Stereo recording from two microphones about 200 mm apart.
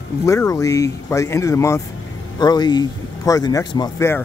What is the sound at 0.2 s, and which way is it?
Speech, 15° left (ahead or behind).